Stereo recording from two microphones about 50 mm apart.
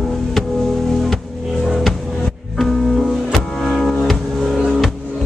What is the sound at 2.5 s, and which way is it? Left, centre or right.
Music, centre.